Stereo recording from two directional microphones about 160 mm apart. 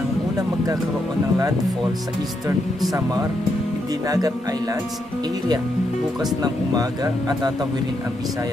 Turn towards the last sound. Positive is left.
turn(degrees=-25)  # may be behind; listen again after turning